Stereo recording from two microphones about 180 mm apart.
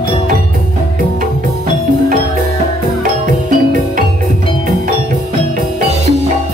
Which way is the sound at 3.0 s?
50° right (ahead or behind).